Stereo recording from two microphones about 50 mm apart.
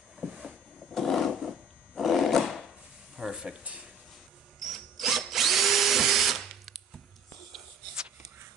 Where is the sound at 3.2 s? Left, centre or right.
Centre.